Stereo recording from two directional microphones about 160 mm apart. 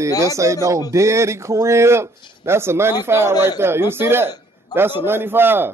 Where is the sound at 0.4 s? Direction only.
20° right (ahead or behind).